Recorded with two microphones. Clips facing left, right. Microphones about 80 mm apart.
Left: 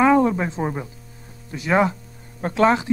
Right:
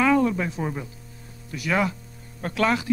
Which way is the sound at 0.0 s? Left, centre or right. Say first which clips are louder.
Left 4 dB; left.